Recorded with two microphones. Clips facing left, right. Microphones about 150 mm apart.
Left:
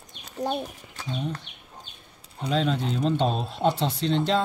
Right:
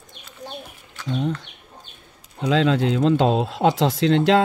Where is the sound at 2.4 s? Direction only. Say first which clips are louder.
Right 6 dB; 90° right.